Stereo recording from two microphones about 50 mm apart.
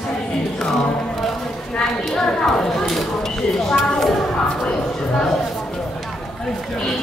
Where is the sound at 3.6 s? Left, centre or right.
Centre.